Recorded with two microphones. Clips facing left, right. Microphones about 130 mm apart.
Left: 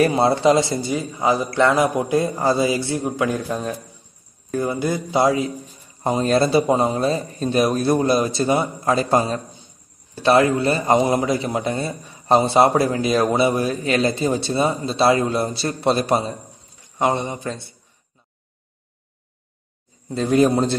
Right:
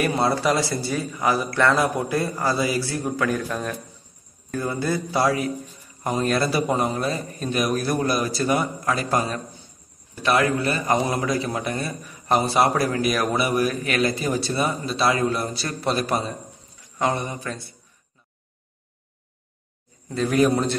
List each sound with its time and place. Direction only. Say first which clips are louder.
0.0 s a man's voice: left 5 dB; 25° left (ahead or behind)
20.1 s a man's voice: left 3 dB; 25° left (ahead or behind)